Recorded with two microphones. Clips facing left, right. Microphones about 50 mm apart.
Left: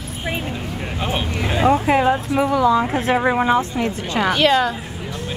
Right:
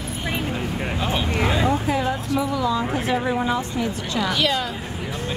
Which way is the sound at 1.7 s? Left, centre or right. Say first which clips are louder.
Left 6 dB; left.